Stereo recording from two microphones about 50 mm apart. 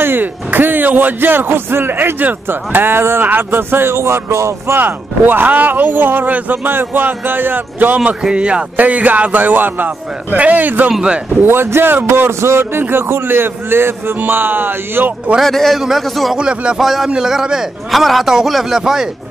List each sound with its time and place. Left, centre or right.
0.0 s speech: right
4.7 s speech: right
8.0 s speech: right
8.7 s speech: right
10.9 s a man's voice: centre
11.4 s a man's voice: right
12.3 s a man's voice: right
15.4 s a man's voice: centre
16.3 s a man's voice: centre
16.7 s a man's voice: centre